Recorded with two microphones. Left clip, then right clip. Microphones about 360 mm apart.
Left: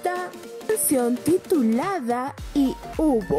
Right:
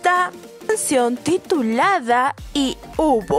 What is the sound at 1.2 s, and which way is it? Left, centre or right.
Speech, right.